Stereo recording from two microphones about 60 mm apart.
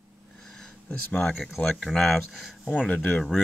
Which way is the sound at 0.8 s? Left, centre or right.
Centre.